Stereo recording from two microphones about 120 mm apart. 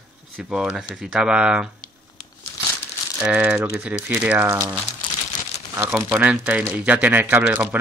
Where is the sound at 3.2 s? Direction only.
10° right (ahead or behind).